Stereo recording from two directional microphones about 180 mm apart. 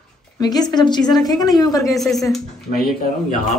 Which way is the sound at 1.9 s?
Centre (ahead or behind).